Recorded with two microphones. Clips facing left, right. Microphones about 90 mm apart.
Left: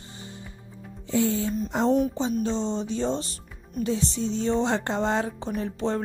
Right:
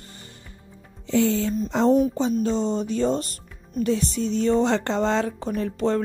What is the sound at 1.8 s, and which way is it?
Speech, 45° right (ahead or behind).